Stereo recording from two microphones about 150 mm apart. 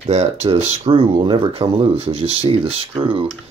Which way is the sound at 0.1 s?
45° right (ahead or behind).